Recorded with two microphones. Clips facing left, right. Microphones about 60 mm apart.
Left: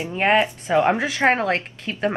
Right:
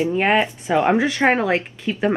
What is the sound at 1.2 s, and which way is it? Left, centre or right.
Speech, centre.